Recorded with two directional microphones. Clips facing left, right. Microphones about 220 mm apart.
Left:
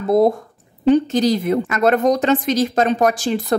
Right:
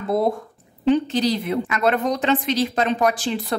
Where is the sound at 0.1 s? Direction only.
40° left (ahead or behind).